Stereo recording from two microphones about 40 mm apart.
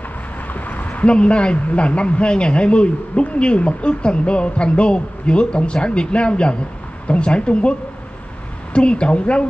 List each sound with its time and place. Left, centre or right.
0.5 s a sound: left
1.1 s speech: left
8.7 s speech: left